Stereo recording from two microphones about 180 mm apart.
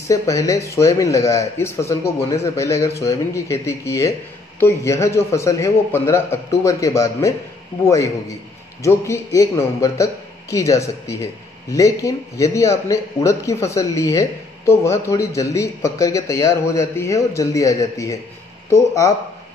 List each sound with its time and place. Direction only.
0.1 s a man's voice: 15° left (ahead or behind)